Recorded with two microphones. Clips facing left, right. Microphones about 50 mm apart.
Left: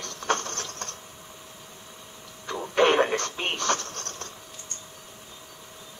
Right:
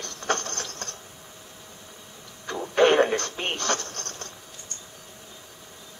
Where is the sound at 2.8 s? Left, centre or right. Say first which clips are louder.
Right 2 dB; centre.